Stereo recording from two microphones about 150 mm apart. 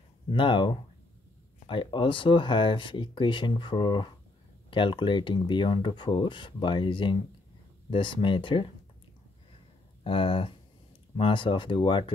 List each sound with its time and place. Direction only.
0.3 s speech: 35° left (ahead or behind)
10.0 s speech: 35° left (ahead or behind)